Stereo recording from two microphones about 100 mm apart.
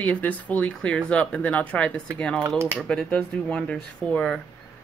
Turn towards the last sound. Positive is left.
turn(degrees=10)  # may be behind; listen again after turning